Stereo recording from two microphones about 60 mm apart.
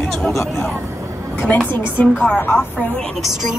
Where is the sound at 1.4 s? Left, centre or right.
Left.